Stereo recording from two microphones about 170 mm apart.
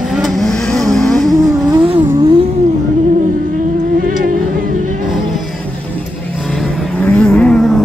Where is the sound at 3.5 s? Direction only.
55° right (ahead or behind).